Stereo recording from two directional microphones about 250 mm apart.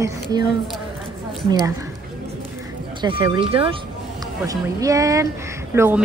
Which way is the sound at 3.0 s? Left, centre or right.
Centre.